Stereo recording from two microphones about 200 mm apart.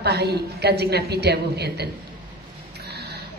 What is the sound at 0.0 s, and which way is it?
A woman's voice, 55° right (ahead or behind).